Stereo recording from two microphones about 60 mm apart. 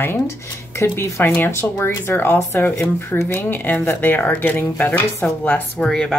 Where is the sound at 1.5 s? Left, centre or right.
Left.